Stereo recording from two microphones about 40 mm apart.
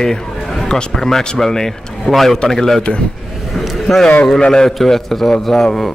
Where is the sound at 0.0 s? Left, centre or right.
Centre.